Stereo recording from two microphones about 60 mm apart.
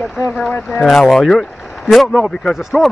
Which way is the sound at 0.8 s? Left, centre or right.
Centre.